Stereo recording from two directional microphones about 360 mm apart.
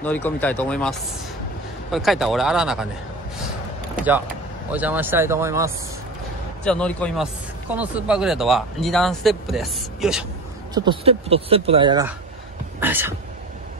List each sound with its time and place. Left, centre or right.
0.0 s speech: centre
4.6 s speech: centre
6.6 s speech: centre
10.7 s speech: centre